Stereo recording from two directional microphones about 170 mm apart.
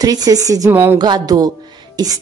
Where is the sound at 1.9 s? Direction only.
20° right (ahead or behind).